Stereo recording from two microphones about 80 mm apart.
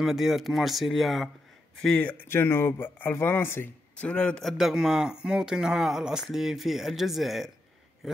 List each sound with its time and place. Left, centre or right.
0.0 s speech: centre
1.8 s speech: centre
2.2 s speech: left
3.9 s a man's voice: centre
4.4 s speech: centre